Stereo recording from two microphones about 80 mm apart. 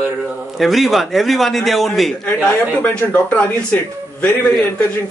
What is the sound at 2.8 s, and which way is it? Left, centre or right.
Speech, centre.